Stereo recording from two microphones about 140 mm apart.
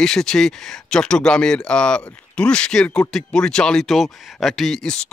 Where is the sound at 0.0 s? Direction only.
5° left (ahead or behind).